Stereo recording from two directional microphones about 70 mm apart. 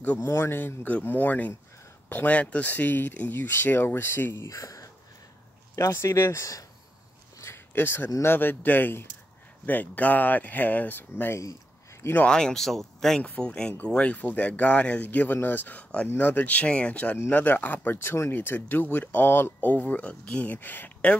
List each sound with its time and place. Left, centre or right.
0.2 s speech: left
7.4 s a sound: left
8.2 s speech: left
12.2 s speech: centre
13.2 s speech: centre